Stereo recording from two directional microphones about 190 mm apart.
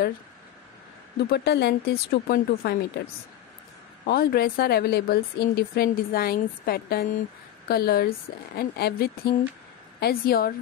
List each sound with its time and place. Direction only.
1.3 s speech: 60° left (ahead or behind)
4.0 s speech: 50° left (ahead or behind)